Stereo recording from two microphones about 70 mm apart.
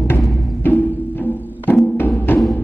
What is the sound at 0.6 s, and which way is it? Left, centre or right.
Music, left.